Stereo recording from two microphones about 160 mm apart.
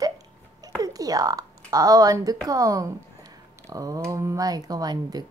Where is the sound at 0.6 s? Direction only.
20° right (ahead or behind).